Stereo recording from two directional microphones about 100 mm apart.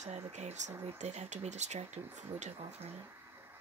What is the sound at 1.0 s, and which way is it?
Speech, 90° right.